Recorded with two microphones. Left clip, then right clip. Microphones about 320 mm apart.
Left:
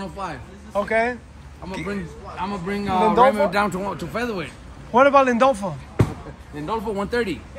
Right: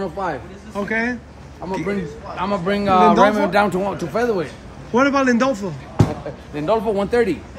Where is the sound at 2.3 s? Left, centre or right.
Centre.